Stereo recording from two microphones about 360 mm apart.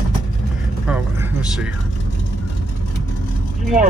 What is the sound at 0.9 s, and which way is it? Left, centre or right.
Vehicle, centre.